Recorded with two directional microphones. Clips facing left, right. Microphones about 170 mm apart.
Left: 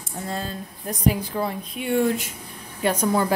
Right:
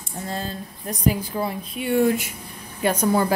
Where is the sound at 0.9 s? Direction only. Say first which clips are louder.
Even; centre (ahead or behind).